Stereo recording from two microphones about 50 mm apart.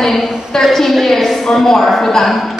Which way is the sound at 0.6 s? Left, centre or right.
Centre.